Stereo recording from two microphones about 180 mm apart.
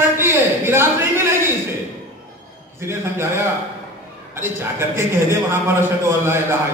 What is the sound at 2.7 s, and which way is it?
Speech, 15° right (ahead or behind).